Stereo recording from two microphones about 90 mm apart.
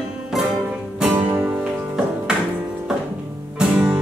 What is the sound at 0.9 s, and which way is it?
Music, 15° right (ahead or behind).